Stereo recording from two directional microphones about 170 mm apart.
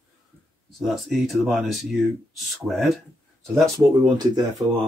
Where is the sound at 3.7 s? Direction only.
25° right (ahead or behind).